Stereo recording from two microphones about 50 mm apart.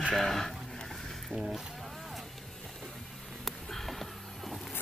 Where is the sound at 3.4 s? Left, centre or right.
Centre.